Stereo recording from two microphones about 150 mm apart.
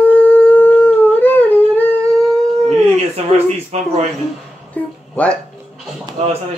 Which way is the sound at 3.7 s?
50° right (ahead or behind).